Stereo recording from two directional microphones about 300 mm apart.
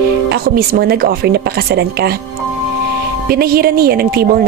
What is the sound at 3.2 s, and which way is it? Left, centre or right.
Speech, right.